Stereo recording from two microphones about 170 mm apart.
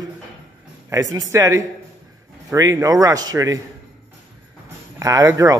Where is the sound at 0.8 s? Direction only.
20° right (ahead or behind).